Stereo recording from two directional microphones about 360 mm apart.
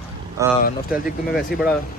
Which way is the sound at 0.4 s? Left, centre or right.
Centre.